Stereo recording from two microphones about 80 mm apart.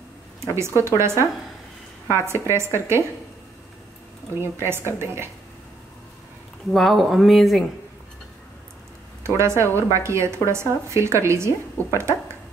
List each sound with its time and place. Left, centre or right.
0.4 s speech: right
2.2 s speech: right
4.4 s speech: right
6.7 s speech: centre
9.2 s speech: right